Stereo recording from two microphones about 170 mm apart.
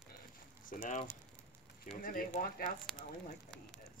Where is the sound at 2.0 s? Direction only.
50° left (ahead or behind).